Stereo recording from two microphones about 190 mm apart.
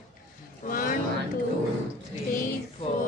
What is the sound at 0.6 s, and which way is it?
Speech, 45° left (ahead or behind).